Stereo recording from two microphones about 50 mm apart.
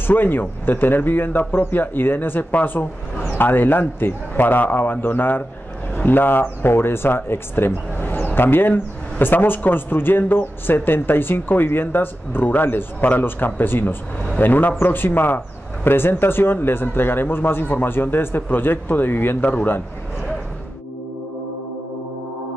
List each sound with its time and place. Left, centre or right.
0.0 s a man's voice: left